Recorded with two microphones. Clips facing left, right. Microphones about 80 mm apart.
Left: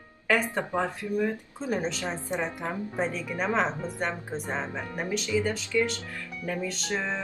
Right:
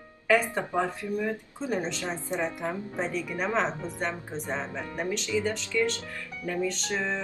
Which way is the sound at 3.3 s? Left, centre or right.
Centre.